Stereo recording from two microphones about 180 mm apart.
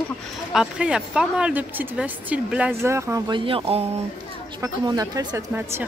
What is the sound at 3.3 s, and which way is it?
Speech, 30° right (ahead or behind).